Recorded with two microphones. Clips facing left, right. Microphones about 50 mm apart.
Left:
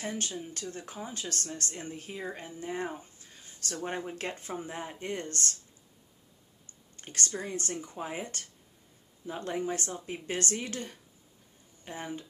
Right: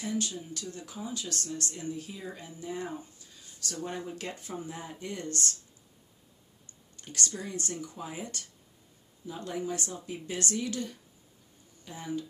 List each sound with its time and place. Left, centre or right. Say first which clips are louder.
0.0 s speech: right 2 dB; left
7.0 s speech: left 1 dB; left